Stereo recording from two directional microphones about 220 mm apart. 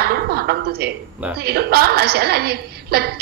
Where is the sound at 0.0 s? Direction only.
45° right (ahead or behind).